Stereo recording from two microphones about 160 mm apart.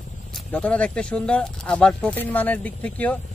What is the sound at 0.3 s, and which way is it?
Speech, 10° left (ahead or behind).